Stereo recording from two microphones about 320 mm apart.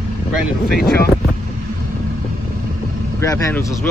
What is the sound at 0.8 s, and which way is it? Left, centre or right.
Speech, left.